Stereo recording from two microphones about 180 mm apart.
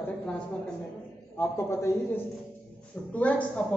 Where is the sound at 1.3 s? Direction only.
15° left (ahead or behind).